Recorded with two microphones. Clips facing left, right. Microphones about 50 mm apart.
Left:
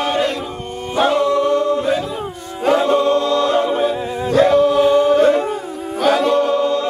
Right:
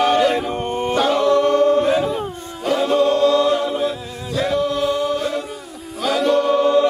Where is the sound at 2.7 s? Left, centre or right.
Left.